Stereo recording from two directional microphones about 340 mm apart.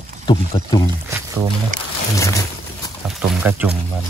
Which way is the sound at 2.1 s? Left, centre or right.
Centre.